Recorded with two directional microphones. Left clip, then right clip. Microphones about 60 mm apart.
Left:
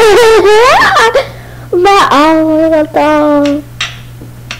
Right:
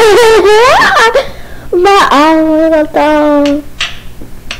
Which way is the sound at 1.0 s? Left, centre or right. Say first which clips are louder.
Right 1 dB; right.